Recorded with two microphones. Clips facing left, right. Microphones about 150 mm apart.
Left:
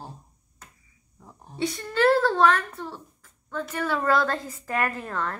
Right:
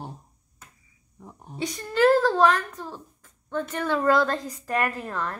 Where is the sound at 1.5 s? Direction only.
15° right (ahead or behind).